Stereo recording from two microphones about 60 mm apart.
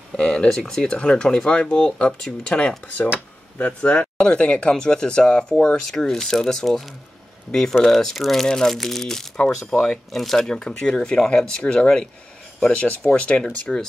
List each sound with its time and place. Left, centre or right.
0.2 s speech: centre
7.8 s speech: centre